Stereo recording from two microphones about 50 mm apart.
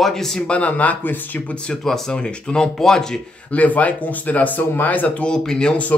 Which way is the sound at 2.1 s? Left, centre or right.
Centre.